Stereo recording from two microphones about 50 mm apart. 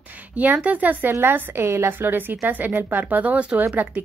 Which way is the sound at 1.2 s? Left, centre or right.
Right.